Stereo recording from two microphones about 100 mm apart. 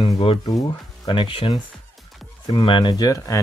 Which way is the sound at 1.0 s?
55° left (ahead or behind).